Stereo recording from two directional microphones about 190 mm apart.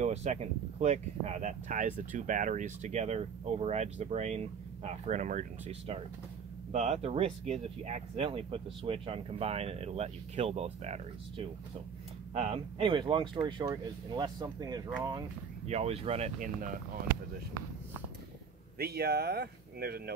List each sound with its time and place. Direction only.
0.0 s speech: 35° right (ahead or behind); by 14.8 s 20° right (ahead or behind)
15.6 s speech: 35° right (ahead or behind)
18.8 s speech: 60° right (ahead or behind)